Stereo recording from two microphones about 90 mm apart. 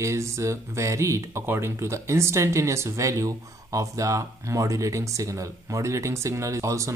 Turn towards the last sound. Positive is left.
turn(degrees=-35)  # may be behind; listen again after turning